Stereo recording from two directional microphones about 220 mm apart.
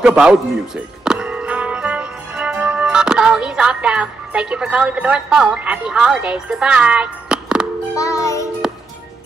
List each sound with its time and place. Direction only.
0.0 s music: 5° right (ahead or behind)
7.9 s music: 15° left (ahead or behind)